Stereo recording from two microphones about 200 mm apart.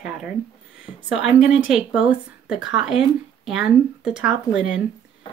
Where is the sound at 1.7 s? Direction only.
5° right (ahead or behind).